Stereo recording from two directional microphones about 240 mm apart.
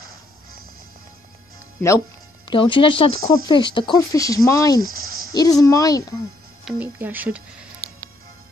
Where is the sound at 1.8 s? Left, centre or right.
Centre.